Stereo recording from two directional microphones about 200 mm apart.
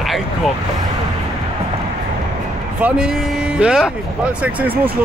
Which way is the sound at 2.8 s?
5° right (ahead or behind).